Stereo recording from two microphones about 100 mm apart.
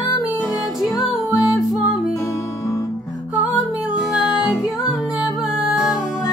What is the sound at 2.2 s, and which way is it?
Music, 30° left (ahead or behind).